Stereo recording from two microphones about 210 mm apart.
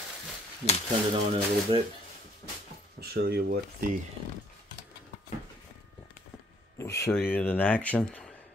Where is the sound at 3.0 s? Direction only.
50° right (ahead or behind).